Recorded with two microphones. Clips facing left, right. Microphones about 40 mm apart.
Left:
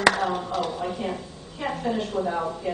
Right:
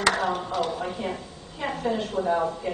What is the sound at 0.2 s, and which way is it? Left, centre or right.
A woman's voice, centre.